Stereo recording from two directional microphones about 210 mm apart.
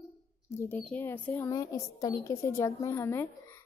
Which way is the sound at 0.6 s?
10° left (ahead or behind).